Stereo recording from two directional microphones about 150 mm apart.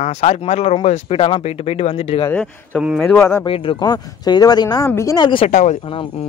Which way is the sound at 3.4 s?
35° left (ahead or behind).